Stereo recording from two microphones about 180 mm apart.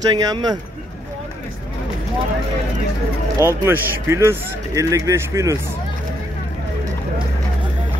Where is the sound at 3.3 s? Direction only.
15° right (ahead or behind).